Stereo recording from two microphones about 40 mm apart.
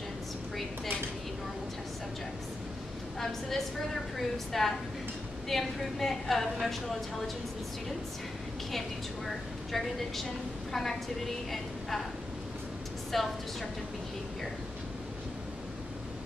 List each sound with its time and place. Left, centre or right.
3.2 s a woman's voice: centre
8.7 s a woman's voice: centre
13.1 s a woman's voice: centre